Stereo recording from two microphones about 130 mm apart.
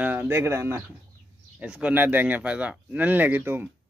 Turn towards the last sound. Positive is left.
turn(degrees=-15)  # may be behind; listen again after turning